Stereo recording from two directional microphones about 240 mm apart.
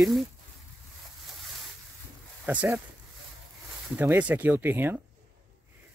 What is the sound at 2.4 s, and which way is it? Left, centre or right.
Speech, centre.